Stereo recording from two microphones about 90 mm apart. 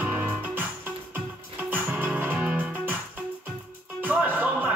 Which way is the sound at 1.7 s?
20° right (ahead or behind).